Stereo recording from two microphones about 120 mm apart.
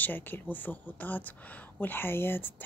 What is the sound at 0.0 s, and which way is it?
Speech, 15° left (ahead or behind).